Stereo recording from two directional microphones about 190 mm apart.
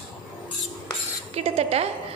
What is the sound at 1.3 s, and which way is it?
Speech, 35° right (ahead or behind).